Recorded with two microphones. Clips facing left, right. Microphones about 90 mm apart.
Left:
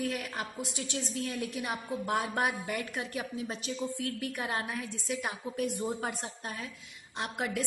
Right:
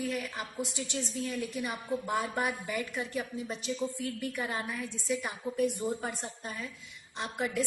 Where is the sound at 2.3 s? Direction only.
55° left (ahead or behind).